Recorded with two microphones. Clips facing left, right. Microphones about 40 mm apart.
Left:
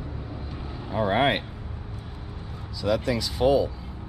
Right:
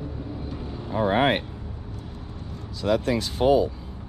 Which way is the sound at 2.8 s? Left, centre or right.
Right.